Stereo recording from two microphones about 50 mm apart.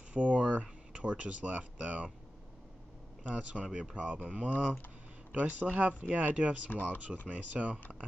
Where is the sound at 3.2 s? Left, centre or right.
Right.